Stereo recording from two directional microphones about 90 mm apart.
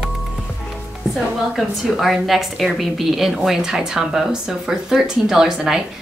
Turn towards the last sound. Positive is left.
turn(degrees=-5)  # may be behind; listen again after turning